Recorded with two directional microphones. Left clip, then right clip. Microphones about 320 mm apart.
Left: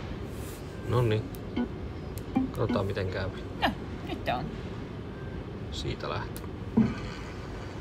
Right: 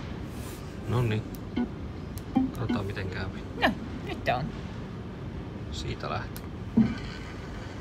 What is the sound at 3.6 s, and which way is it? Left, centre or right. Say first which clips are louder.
Vehicle: right 3 dB; right.